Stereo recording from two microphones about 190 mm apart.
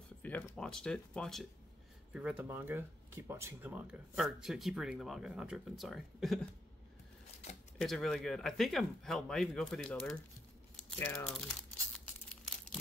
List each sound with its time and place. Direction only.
0.2 s speech: 10° left (ahead or behind)
7.8 s speech: centre (ahead or behind)